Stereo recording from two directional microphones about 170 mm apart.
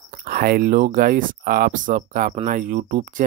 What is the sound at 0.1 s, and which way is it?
Speech, 55° right (ahead or behind).